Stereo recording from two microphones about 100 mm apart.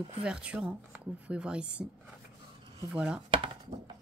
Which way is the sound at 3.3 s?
75° right (ahead or behind).